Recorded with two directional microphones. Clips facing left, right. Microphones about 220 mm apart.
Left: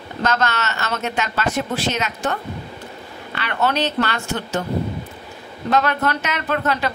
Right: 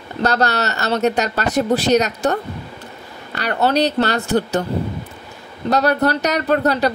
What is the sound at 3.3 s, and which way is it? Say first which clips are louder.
Speech: right 4 dB; 40° right (ahead or behind).